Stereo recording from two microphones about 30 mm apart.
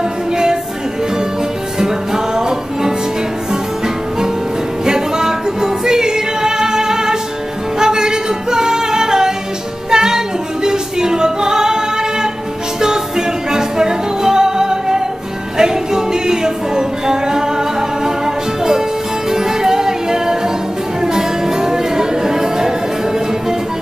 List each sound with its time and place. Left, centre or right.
1.8 s music: right
4.8 s music: centre
13.5 s music: right